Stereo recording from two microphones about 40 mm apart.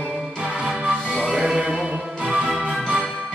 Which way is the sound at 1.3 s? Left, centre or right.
Centre.